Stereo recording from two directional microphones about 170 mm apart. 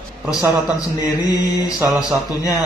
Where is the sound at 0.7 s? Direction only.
20° left (ahead or behind).